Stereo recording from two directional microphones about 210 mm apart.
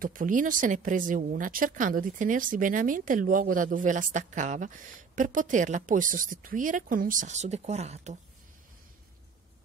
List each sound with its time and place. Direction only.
0.0 s a woman's voice: 40° right (ahead or behind)